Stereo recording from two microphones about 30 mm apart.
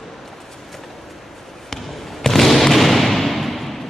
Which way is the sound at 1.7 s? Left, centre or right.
Centre.